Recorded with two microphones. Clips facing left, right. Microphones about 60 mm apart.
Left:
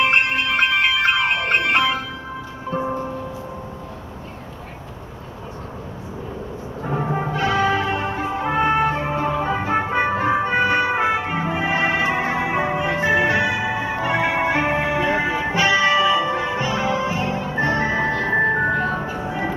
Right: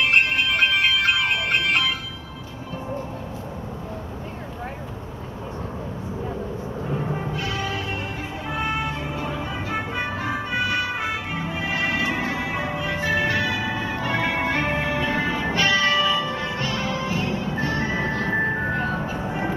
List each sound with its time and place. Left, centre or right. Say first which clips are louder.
0.0 s music: left 2 dB; left
6.8 s music: left 6 dB; left
18.9 s music: left 2 dB; centre